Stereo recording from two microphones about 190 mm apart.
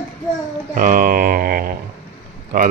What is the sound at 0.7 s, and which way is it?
Speech, 45° right (ahead or behind).